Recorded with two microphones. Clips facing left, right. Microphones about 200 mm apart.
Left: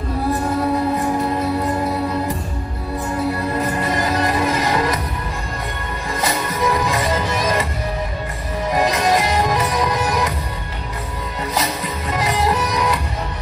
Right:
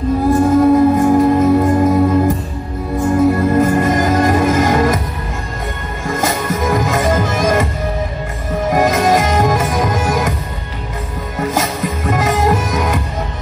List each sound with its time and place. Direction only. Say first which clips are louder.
0.3 s music: right 10 dB; 45° right (ahead or behind)
6.0 s music: right 5 dB; 45° right (ahead or behind)
8.6 s music: right 4 dB; 45° right (ahead or behind)
11.3 s music: right 5 dB; 50° right (ahead or behind)